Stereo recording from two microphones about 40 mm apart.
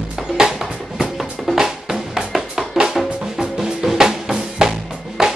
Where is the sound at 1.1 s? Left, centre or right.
Centre.